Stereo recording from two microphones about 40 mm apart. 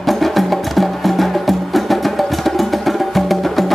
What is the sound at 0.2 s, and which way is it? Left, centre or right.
Music, centre.